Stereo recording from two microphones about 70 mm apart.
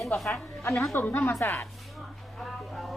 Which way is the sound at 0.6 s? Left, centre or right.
Left.